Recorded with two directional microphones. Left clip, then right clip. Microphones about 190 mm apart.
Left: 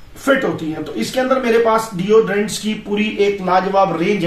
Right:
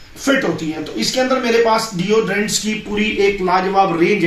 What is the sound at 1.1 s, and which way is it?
A man's voice, 5° left (ahead or behind).